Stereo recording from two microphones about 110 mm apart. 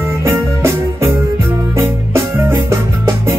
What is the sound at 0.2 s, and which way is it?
Music, 25° right (ahead or behind).